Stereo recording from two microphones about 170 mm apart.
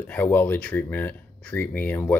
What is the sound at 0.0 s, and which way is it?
Speech, 10° left (ahead or behind).